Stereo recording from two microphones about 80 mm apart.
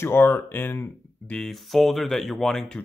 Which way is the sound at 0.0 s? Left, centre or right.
Left.